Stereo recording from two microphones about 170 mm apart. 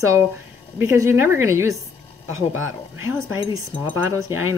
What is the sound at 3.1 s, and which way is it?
Speech, 15° right (ahead or behind).